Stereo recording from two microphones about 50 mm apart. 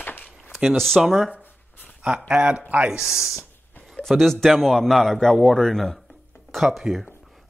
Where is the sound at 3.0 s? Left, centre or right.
Centre.